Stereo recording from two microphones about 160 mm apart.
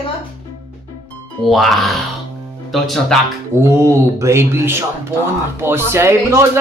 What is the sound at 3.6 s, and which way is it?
Speech, 15° right (ahead or behind).